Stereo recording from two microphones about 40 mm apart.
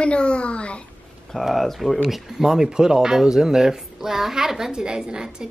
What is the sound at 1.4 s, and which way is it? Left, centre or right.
A child's voice, centre.